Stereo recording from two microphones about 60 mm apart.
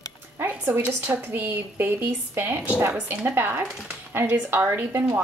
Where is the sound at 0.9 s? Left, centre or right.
Right.